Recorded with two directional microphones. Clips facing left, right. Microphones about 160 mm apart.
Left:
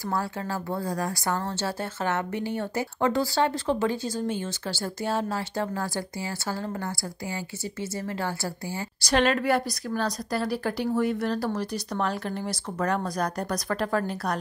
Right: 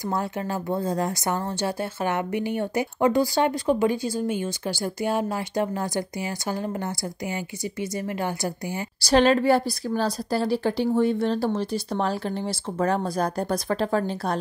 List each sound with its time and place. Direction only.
0.1 s a woman's voice: 20° right (ahead or behind)
9.0 s a woman's voice: 30° right (ahead or behind)